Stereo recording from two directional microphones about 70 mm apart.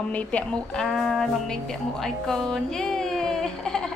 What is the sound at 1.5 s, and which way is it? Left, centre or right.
Music, centre.